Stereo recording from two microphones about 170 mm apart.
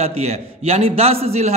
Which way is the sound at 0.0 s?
40° right (ahead or behind).